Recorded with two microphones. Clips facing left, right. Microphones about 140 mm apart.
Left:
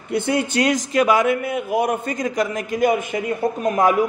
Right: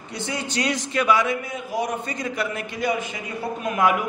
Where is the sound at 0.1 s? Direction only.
55° left (ahead or behind).